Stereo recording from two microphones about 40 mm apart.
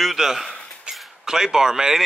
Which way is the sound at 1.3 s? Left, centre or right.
Centre.